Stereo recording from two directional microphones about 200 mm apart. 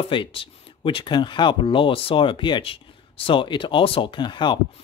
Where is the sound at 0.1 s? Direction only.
25° left (ahead or behind).